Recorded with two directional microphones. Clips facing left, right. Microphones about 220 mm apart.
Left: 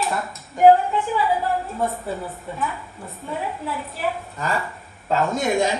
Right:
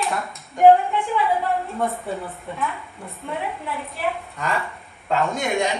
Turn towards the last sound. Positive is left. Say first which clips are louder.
# left 2 dB
turn(degrees=0)  # may be behind; listen again after turning